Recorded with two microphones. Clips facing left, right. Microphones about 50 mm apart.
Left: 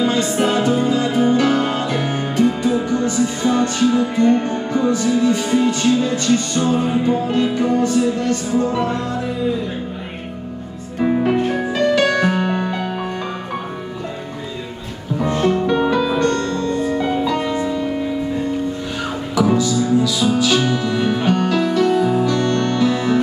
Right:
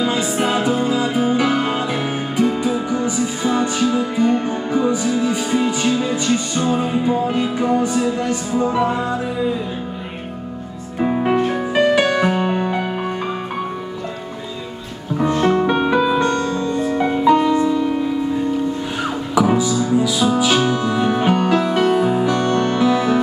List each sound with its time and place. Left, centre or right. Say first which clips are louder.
0.0 s music: left 2 dB; centre
11.0 s music: left 1 dB; centre
11.7 s music: right 1 dB; centre
15.4 s music: left 1 dB; right
15.9 s music: right 1 dB; centre
19.4 s music: left 3 dB; right